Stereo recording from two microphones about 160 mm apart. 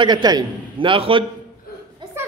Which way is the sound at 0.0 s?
25° right (ahead or behind).